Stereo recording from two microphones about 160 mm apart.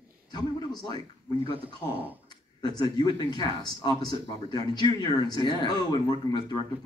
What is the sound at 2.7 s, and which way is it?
Speech, 25° left (ahead or behind).